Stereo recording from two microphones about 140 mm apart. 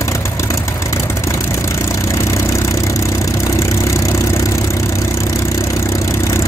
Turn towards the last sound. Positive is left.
turn(degrees=20)  # may be behind; listen again after turning